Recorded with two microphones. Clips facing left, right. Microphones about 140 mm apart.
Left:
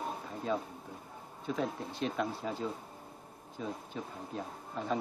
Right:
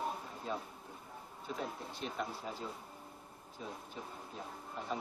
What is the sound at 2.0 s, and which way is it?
Speech, 90° left.